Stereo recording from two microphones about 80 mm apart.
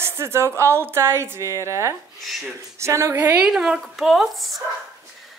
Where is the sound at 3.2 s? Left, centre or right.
Centre.